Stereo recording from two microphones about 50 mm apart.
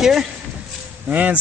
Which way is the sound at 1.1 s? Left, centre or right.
Right.